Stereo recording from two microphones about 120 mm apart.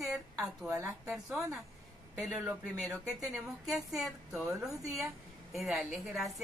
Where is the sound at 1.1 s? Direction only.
5° right (ahead or behind).